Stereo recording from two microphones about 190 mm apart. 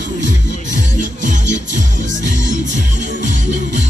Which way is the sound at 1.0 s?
40° right (ahead or behind).